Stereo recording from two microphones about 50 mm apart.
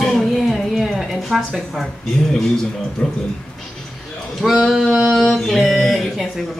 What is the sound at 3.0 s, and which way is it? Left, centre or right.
Speech, left.